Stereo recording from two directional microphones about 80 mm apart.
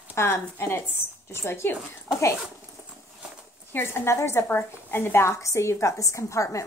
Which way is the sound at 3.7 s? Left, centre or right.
Left.